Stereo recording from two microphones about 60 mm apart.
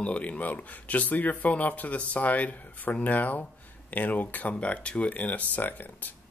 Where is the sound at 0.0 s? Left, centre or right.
Left.